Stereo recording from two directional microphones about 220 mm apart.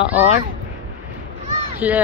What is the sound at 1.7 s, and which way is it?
Speech, 5° right (ahead or behind).